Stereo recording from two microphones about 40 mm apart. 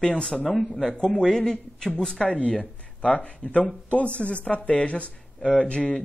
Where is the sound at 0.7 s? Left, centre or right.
Centre.